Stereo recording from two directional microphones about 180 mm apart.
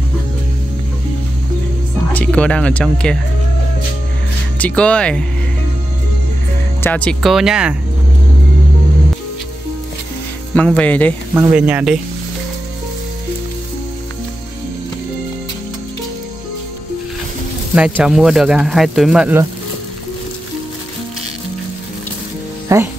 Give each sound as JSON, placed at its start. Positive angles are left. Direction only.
{"t": 2.1, "sound": "speech", "side_deg": 5}
{"t": 4.6, "sound": "speech", "side_deg": 5}
{"t": 6.8, "sound": "speech", "side_deg": 10}
{"t": 10.5, "sound": "speech", "side_deg": 5}
{"t": 11.3, "sound": "speech", "side_deg": -10}
{"t": 17.7, "sound": "speech", "side_deg": -5}
{"t": 22.7, "sound": "speech", "side_deg": -15}